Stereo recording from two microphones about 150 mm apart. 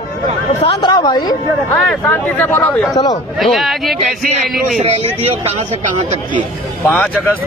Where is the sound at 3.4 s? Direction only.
Centre (ahead or behind).